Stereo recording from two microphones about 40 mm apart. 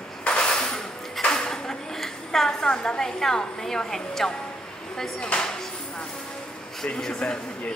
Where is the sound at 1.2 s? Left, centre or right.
Centre.